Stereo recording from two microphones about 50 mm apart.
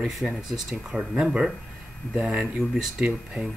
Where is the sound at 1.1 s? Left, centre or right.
Right.